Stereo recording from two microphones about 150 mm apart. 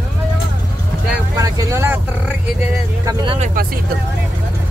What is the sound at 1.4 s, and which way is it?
Speech, 20° right (ahead or behind).